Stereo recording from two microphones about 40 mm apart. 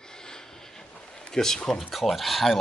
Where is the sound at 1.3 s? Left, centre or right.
Centre.